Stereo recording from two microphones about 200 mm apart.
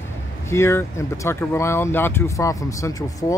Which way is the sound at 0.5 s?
15° left (ahead or behind).